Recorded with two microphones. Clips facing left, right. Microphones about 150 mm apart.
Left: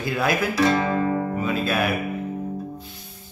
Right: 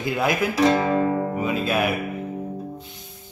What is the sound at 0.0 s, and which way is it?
Speech, 20° right (ahead or behind).